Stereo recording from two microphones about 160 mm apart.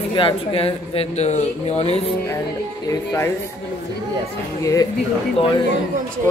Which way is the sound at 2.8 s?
15° left (ahead or behind).